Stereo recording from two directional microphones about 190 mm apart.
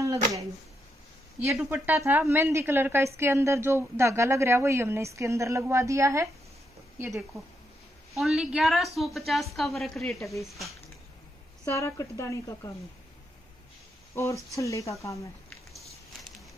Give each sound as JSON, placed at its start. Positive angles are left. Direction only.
{"t": 0.0, "sound": "a sound", "side_deg": -15}
{"t": 1.5, "sound": "a woman's voice", "side_deg": -5}
{"t": 8.1, "sound": "a woman's voice", "side_deg": 0}
{"t": 11.6, "sound": "a woman's voice", "side_deg": 15}
{"t": 14.1, "sound": "a woman's voice", "side_deg": 15}